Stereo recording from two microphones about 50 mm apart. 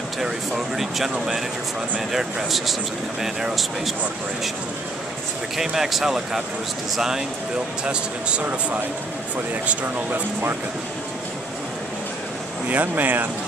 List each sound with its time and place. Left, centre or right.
0.2 s a sound: centre
2.0 s speech: centre
5.6 s speech: centre
7.8 s speech: right
12.6 s speech: right